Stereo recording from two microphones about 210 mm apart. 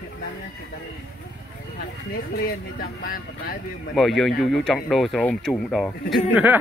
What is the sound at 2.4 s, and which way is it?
Speech, 45° left (ahead or behind).